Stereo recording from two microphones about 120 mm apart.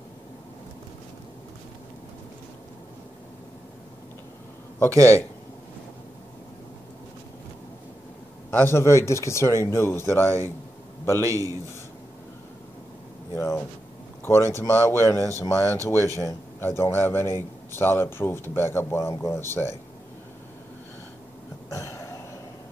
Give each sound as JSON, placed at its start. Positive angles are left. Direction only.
{"t": 4.9, "sound": "a man's voice", "side_deg": -25}
{"t": 8.5, "sound": "speech", "side_deg": 20}
{"t": 11.1, "sound": "a man's voice", "side_deg": -25}
{"t": 13.3, "sound": "a sound", "side_deg": 25}
{"t": 14.2, "sound": "speech", "side_deg": 20}
{"t": 21.6, "sound": "throat clearing", "side_deg": 25}